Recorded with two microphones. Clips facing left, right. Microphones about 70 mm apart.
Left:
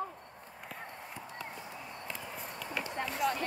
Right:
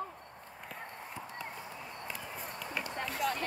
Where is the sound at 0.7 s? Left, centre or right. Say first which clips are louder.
Right 1 dB; centre.